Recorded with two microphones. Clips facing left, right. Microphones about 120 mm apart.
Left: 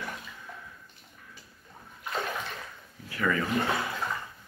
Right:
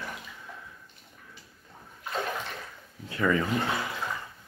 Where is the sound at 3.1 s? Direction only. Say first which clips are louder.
Right 3 dB; 25° right (ahead or behind).